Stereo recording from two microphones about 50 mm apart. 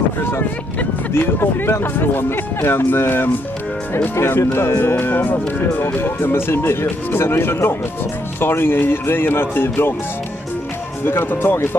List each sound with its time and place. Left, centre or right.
1.1 s speech: left
4.1 s speech: left
11.1 s speech: left